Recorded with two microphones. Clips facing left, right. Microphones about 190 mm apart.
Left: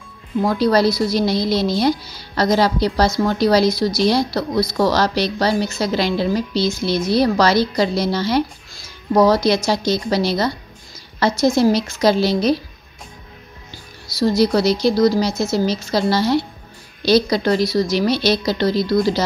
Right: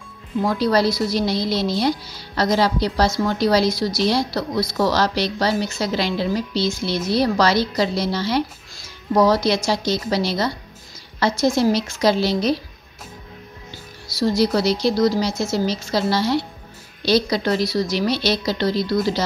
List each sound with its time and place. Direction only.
0.6 s speech: 40° left (ahead or behind)
14.1 s speech: 40° left (ahead or behind)